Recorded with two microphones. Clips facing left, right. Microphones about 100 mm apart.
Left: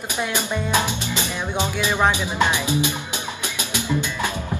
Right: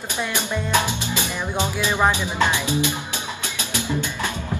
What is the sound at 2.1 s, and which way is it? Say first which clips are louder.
Speech: even; 15° left (ahead or behind).